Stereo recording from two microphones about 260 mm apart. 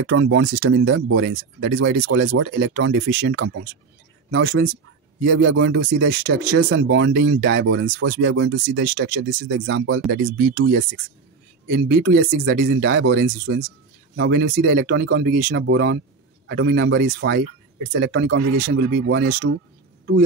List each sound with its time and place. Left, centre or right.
0.0 s speech: right
4.5 s speech: right
5.3 s speech: right
6.0 s speech: right
6.5 s speech: right
8.6 s speech: right
9.5 s speech: right
12.6 s speech: right
14.1 s speech: right
15.3 s speech: right
15.6 s speech: right